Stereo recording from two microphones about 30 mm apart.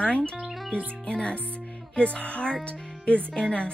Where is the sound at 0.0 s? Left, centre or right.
Left.